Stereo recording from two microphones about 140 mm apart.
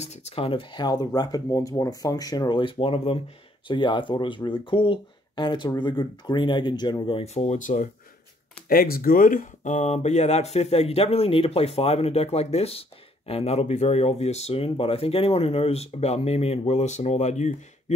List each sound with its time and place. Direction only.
0.0 s speech: 45° left (ahead or behind)
7.3 s speech: 60° left (ahead or behind)
8.6 s speech: 90° left; by 17.9 s 55° left (ahead or behind)